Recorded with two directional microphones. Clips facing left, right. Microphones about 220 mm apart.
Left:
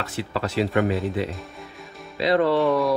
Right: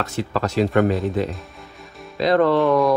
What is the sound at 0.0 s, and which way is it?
Speech, 45° right (ahead or behind).